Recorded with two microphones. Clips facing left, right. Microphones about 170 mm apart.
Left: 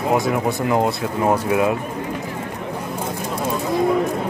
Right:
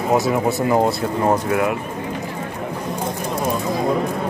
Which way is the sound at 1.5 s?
20° left (ahead or behind).